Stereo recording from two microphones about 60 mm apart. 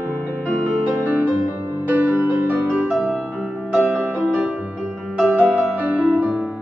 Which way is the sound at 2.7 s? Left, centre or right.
Centre.